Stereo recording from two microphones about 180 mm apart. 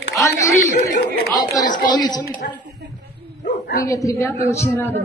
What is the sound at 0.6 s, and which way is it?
Chatter, 50° left (ahead or behind).